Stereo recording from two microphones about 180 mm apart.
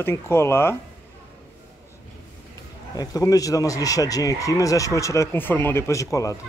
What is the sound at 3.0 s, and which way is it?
Speech, 20° left (ahead or behind).